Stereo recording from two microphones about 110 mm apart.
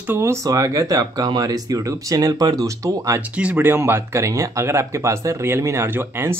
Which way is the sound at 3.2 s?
15° right (ahead or behind).